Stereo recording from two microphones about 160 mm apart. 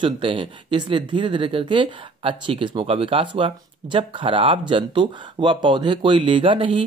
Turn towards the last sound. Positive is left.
turn(degrees=-30)  # may be behind; listen again after turning